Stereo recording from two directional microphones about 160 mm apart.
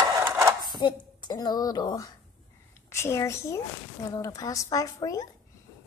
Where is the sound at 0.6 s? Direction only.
30° left (ahead or behind).